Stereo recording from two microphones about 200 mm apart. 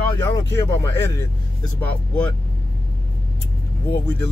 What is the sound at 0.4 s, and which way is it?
Speech, 15° left (ahead or behind).